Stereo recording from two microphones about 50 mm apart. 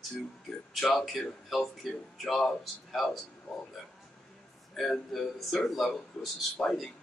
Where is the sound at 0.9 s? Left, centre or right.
Centre.